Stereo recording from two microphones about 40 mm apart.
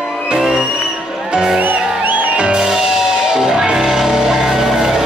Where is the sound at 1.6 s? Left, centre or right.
Right.